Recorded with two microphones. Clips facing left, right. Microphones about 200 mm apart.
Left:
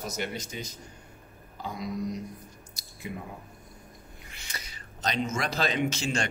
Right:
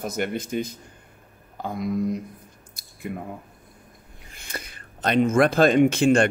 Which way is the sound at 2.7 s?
55° right (ahead or behind).